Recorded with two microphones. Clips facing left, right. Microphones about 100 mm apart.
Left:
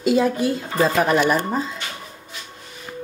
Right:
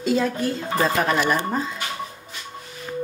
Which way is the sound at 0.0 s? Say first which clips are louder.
Left 3 dB; 10° left (ahead or behind).